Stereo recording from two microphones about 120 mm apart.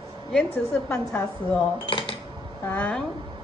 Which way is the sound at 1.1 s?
15° left (ahead or behind).